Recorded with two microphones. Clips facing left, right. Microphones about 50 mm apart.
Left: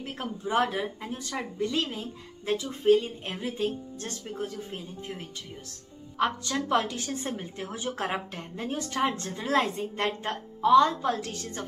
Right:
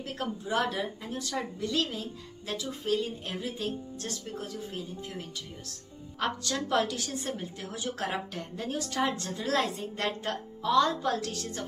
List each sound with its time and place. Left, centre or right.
0.0 s speech: left
6.1 s speech: centre